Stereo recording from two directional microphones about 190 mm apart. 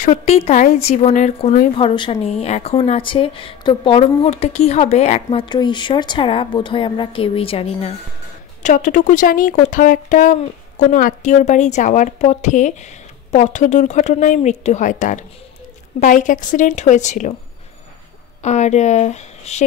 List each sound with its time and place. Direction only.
0.0 s a woman's voice: 40° left (ahead or behind)
18.4 s speech: 35° left (ahead or behind)